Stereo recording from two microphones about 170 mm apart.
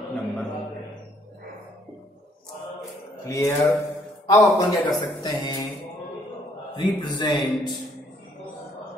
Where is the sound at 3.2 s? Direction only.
20° left (ahead or behind).